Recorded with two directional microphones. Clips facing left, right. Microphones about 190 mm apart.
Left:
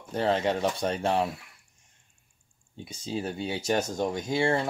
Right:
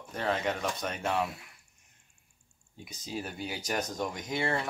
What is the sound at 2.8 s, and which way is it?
Speech, 30° left (ahead or behind).